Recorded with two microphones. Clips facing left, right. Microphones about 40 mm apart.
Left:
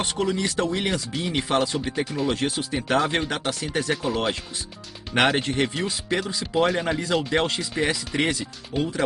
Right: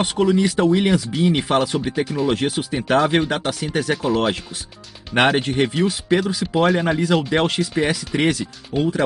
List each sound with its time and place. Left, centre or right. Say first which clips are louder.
0.0 s speech: right 7 dB; right
2.0 s speech: right 4 dB; centre
2.3 s speech: right 5 dB; centre
2.7 s speech: right 6 dB; centre
5.5 s speech: right 5 dB; centre